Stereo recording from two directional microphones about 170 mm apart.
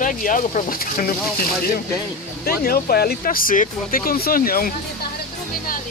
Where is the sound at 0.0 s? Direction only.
50° left (ahead or behind).